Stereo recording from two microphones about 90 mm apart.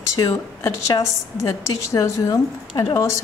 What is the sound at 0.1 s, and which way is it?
Speech, 35° left (ahead or behind).